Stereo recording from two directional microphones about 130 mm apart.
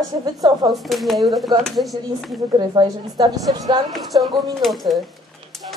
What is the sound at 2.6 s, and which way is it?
A woman's voice, 35° right (ahead or behind).